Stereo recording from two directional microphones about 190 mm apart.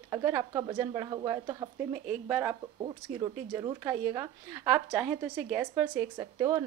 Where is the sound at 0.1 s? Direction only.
15° right (ahead or behind).